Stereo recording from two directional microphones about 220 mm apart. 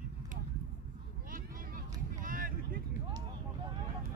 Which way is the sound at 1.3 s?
40° right (ahead or behind).